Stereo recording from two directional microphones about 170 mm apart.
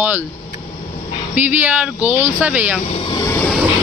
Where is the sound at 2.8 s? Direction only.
35° left (ahead or behind).